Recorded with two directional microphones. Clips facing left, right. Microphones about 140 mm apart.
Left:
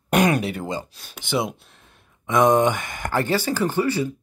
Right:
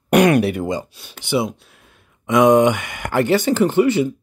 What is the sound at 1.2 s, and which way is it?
Speech, 5° right (ahead or behind).